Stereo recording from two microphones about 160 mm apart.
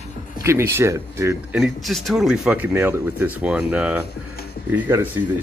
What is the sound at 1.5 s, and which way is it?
Speech, centre (ahead or behind).